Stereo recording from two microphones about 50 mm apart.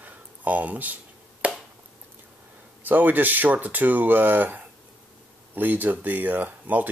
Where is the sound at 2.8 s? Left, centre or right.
Right.